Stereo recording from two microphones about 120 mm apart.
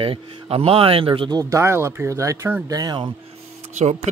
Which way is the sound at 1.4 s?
25° right (ahead or behind).